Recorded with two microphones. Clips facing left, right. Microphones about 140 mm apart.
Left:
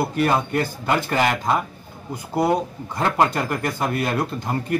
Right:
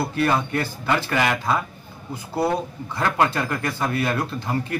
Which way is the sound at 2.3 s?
15° left (ahead or behind).